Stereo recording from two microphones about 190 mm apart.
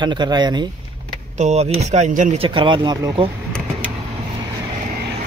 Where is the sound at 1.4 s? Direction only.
35° right (ahead or behind).